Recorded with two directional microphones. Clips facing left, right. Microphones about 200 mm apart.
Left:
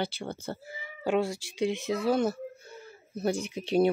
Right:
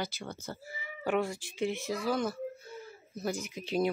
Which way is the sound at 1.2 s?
90° left.